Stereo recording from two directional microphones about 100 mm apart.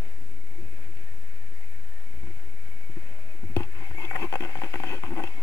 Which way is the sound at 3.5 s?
30° left (ahead or behind).